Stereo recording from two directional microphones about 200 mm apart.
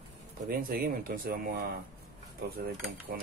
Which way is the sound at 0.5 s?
50° right (ahead or behind).